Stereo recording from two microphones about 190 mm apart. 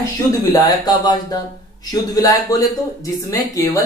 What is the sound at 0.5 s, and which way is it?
Speech, 20° left (ahead or behind).